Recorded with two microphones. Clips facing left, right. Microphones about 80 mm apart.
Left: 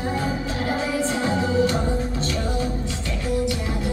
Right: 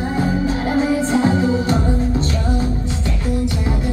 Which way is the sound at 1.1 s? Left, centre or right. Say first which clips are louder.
Right 5 dB; right.